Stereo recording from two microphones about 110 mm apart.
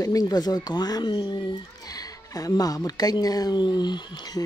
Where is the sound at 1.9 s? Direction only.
35° left (ahead or behind).